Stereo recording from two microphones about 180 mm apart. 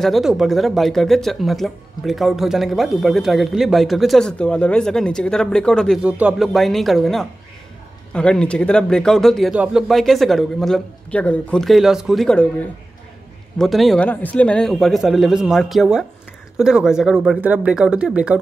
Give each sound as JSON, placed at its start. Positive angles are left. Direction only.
{"t": 0.0, "sound": "speech", "side_deg": 0}
{"t": 6.0, "sound": "speech", "side_deg": -5}